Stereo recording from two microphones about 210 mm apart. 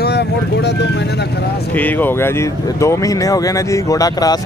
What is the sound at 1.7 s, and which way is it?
Speech, 10° left (ahead or behind).